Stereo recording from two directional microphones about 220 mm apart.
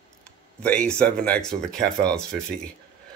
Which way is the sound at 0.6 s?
5° left (ahead or behind).